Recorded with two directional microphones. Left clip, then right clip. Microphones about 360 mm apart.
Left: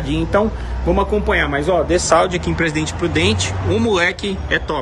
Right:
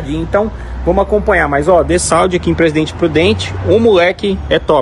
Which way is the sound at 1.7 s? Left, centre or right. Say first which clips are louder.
Right 3 dB; right.